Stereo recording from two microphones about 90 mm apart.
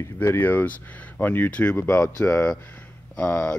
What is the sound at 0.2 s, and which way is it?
Speech, 25° left (ahead or behind).